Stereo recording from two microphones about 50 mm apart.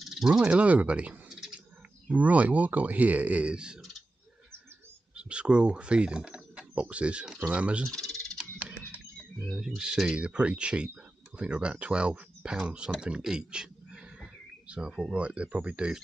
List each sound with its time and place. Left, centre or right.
0.0 s cricket: centre
0.3 s speech: right
1.3 s bird: centre
2.0 s speech: right
5.1 s speech: right
7.8 s speech: centre
8.4 s a sound: right
9.8 s speech: centre
13.2 s a sound: centre
15.0 s speech: right